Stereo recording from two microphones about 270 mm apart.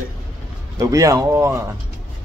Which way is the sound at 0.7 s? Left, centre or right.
Centre.